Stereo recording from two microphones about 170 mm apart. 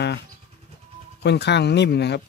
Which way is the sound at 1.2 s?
85° left.